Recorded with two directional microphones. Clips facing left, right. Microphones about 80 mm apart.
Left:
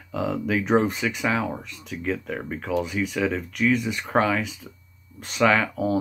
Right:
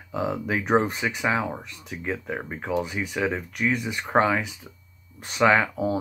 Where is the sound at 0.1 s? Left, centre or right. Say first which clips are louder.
Left 2 dB; right.